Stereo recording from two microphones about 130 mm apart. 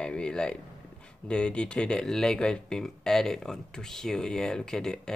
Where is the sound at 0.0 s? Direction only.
5° left (ahead or behind).